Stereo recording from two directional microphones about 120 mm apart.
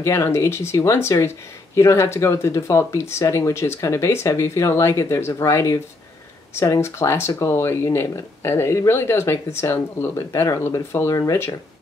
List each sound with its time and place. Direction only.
0.0 s speech: 25° left (ahead or behind)